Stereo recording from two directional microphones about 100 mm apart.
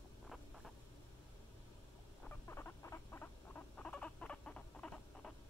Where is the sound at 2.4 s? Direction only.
25° left (ahead or behind); by 5.3 s 10° left (ahead or behind).